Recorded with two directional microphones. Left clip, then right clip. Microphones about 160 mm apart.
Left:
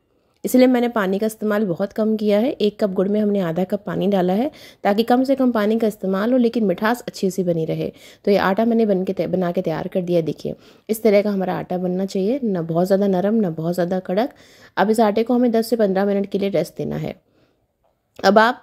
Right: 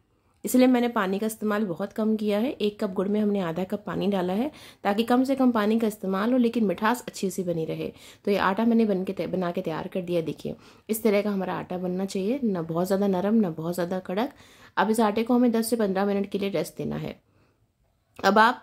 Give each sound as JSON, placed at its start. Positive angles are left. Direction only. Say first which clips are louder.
{"t": 0.4, "sound": "a woman's voice", "louder": "left 6 dB", "side_deg": 35}